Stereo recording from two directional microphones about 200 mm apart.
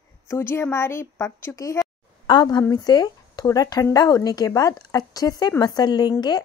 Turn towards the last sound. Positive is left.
turn(degrees=20)  # may be behind; listen again after turning